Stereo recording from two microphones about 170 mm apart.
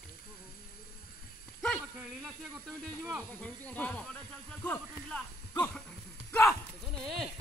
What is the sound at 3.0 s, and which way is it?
Speech, 10° right (ahead or behind).